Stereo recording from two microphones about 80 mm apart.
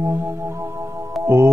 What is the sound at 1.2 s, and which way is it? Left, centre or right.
Music, right.